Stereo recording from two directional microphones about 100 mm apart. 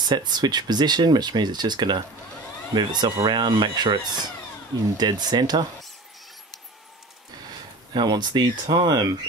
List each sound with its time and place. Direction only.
0.0 s speech: 45° right (ahead or behind)
7.9 s speech: 45° right (ahead or behind)